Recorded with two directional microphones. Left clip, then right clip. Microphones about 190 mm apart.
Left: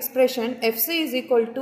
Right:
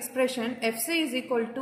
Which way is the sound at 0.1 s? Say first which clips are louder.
Left 7 dB; 15° left (ahead or behind).